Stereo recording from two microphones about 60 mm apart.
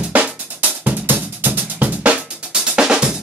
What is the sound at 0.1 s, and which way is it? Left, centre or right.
Drum, right.